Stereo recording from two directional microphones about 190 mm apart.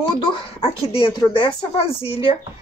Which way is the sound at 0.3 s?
30° left (ahead or behind).